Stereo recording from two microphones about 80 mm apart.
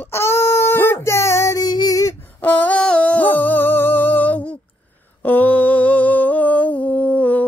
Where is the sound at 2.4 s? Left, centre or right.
Left.